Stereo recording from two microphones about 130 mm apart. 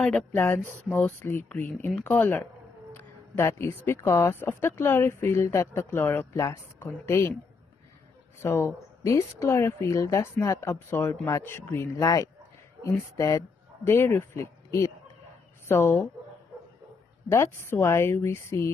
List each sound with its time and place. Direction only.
0.0 s speech: 10° left (ahead or behind)
8.4 s speech: 20° left (ahead or behind)
17.3 s speech: 20° left (ahead or behind)